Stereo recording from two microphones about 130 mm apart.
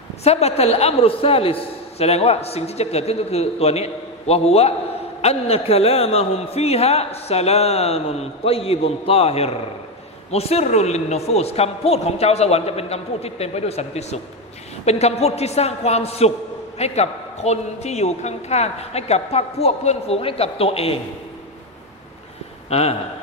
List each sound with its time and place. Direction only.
0.2 s a man's voice: 55° left (ahead or behind)
22.7 s a man's voice: 55° left (ahead or behind)